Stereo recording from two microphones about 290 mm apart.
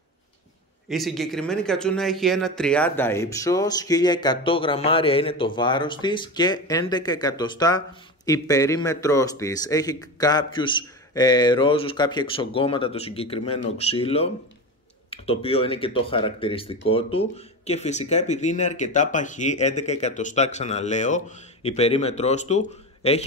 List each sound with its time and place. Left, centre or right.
0.8 s speech: centre; by 23.2 s left